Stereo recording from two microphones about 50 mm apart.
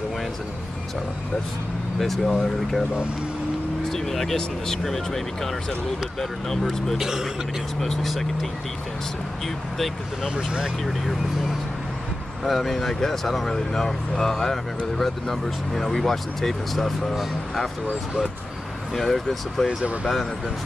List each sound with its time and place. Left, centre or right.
2.0 s speech: centre
3.9 s speech: centre
6.5 s speech: centre
7.0 s speech: centre
7.8 s speech: centre
10.2 s speech: centre
10.8 s speech: centre
18.9 s speech: centre
19.8 s speech: right